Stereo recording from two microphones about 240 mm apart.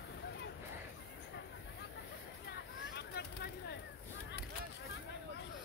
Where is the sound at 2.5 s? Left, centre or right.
Left.